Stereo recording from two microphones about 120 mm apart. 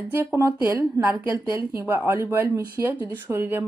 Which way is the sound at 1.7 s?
20° right (ahead or behind).